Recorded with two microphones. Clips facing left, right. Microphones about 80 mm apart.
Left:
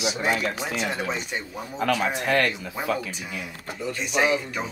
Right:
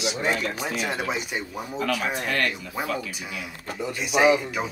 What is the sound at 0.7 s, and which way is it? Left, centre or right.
Speech, centre.